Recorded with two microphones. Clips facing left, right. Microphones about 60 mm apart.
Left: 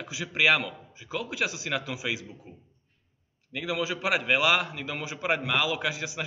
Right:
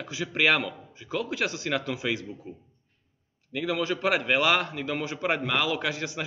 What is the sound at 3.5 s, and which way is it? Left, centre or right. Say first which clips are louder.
A man's voice: right 2 dB; centre.